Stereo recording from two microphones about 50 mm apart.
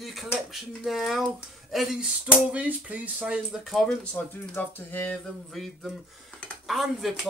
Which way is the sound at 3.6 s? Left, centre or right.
Centre.